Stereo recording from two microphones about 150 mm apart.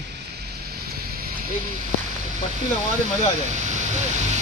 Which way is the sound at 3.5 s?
55° right (ahead or behind).